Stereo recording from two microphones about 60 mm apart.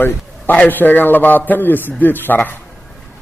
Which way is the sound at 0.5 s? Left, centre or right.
Left.